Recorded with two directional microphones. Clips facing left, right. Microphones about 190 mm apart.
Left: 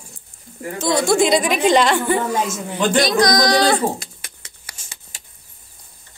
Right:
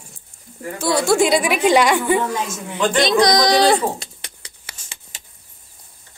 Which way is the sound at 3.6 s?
30° right (ahead or behind).